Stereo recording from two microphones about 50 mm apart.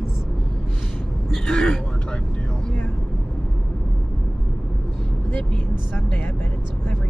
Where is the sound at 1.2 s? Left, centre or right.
Centre.